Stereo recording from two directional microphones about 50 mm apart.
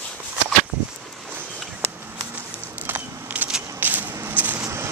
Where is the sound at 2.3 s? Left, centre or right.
Right.